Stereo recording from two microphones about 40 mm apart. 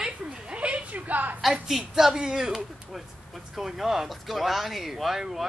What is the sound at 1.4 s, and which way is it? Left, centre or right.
A woman's voice, centre.